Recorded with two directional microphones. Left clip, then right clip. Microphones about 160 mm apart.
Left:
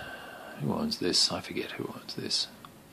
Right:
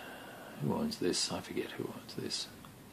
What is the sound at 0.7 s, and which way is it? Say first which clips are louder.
Speech: left 4 dB; 25° left (ahead or behind).